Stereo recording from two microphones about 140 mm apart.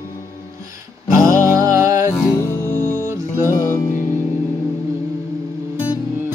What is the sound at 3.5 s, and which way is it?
Music, 25° left (ahead or behind).